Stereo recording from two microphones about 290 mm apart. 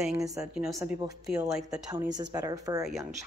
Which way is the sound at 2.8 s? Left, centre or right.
Centre.